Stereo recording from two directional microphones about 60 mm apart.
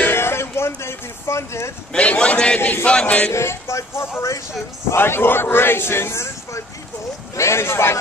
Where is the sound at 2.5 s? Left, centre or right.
Left.